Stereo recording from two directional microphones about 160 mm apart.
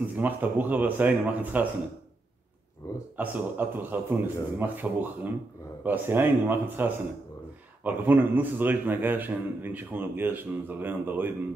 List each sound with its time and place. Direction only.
0.0 s a man's voice: 10° right (ahead or behind)
2.8 s speech: 20° left (ahead or behind)
3.2 s a man's voice: 10° right (ahead or behind)